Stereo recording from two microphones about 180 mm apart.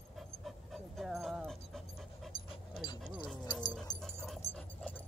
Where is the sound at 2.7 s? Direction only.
25° left (ahead or behind).